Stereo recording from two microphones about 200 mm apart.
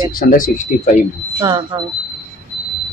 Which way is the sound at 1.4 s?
20° right (ahead or behind).